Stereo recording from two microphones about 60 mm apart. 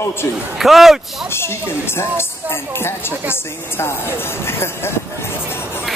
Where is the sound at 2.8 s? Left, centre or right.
Left.